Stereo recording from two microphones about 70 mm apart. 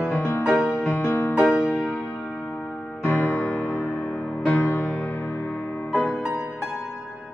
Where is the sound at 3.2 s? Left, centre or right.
Left.